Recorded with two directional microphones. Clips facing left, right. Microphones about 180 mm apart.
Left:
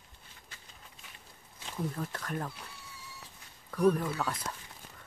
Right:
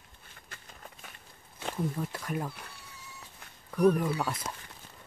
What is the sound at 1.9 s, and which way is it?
Speech, 10° right (ahead or behind).